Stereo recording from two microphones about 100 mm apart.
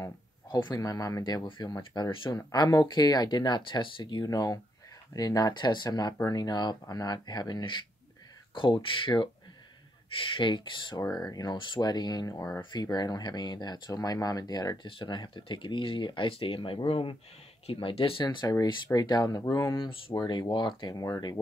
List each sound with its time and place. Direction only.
0.5 s a man's voice: 50° left (ahead or behind)
0.7 s speech: 35° left (ahead or behind)
1.2 s speech: 45° left (ahead or behind)
1.8 s speech: 60° left (ahead or behind)
2.3 s speech: 40° left (ahead or behind)
11.0 s speech: 40° left (ahead or behind)
14.9 s speech: 55° left (ahead or behind)
18.2 s speech: 45° left (ahead or behind)
20.9 s speech: 35° left (ahead or behind)